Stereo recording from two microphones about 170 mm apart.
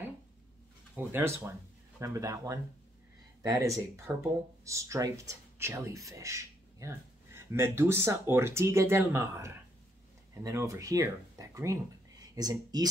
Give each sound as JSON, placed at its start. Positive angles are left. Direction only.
{"t": 0.9, "sound": "speech", "side_deg": -15}